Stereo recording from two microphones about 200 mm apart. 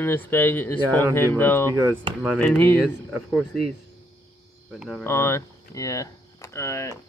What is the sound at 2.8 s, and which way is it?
Speech, centre (ahead or behind).